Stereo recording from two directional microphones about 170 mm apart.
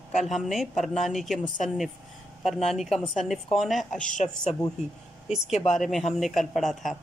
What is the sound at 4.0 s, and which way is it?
Speech, 45° left (ahead or behind).